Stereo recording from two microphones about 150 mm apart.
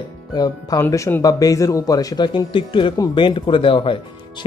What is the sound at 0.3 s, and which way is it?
Speech, 25° left (ahead or behind).